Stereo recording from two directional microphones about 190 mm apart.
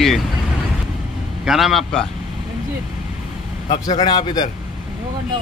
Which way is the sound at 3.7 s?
25° left (ahead or behind).